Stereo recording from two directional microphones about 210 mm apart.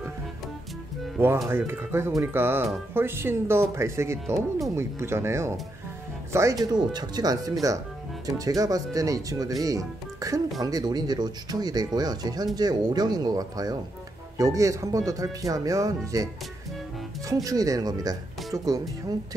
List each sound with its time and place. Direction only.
1.1 s speech: 10° right (ahead or behind)
17.3 s speech: 15° right (ahead or behind)